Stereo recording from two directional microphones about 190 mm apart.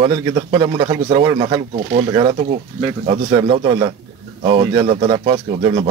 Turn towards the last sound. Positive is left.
turn(degrees=-25)  # may be behind; listen again after turning